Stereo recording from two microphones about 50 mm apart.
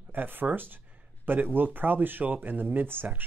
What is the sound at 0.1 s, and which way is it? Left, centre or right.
Speech, right.